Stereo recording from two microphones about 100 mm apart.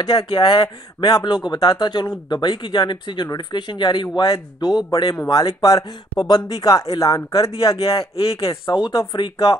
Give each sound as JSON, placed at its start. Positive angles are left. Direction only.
{"t": 0.0, "sound": "speech", "side_deg": 50}